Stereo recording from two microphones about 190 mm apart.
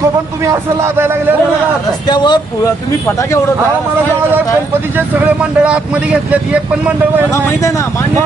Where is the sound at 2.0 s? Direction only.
25° left (ahead or behind).